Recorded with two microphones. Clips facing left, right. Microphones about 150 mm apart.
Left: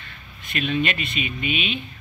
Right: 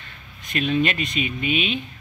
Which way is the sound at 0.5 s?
40° right (ahead or behind).